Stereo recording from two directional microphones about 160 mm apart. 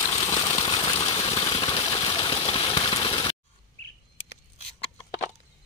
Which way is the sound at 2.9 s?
30° left (ahead or behind).